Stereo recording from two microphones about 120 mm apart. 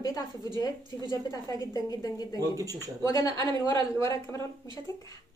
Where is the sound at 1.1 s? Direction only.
30° left (ahead or behind).